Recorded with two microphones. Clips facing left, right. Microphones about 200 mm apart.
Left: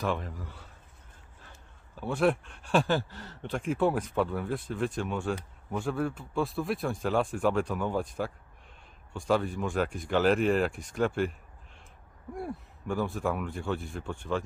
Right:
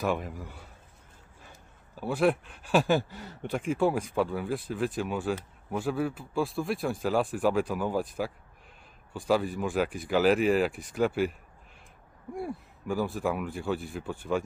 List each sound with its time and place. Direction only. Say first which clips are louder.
0.0 s speech: right 2 dB; 10° right (ahead or behind)
12.4 s speech: right 2 dB; centre (ahead or behind)